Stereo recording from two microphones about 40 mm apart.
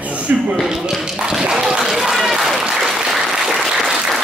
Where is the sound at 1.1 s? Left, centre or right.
Centre.